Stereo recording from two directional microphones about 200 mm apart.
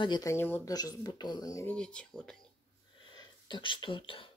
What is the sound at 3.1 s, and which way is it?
Speech, 25° left (ahead or behind).